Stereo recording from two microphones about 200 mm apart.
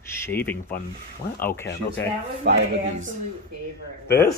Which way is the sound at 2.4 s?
50° right (ahead or behind).